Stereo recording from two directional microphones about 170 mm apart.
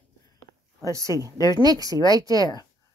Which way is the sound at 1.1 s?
20° left (ahead or behind).